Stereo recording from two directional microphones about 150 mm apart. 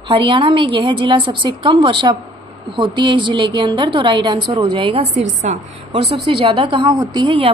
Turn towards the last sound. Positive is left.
turn(degrees=-30)  # may be behind; listen again after turning